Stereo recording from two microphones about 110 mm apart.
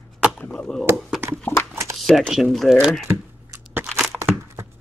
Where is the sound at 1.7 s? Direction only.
25° right (ahead or behind).